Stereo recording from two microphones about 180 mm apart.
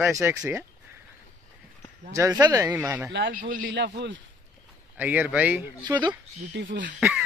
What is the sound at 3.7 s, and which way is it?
Speech, 75° right (ahead or behind).